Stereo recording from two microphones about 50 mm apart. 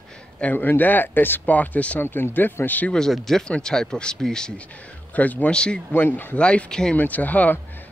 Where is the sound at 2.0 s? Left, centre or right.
Left.